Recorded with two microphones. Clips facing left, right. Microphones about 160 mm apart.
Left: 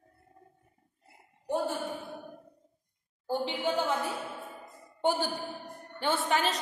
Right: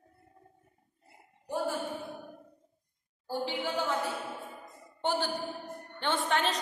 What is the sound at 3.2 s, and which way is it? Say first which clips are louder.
Speech: left 2 dB; 20° left (ahead or behind).